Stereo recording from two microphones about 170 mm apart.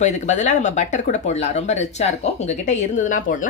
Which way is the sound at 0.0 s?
45° left (ahead or behind).